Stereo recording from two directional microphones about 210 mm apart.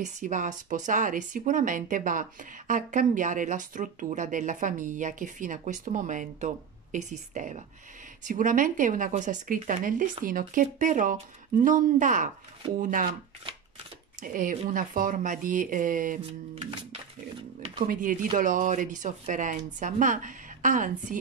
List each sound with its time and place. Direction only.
0.0 s speech: 35° right (ahead or behind)
14.2 s speech: 40° right (ahead or behind)
17.6 s a sound: 30° right (ahead or behind)
17.8 s speech: 40° right (ahead or behind)